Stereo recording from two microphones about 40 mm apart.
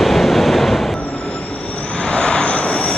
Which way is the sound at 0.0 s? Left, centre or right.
Centre.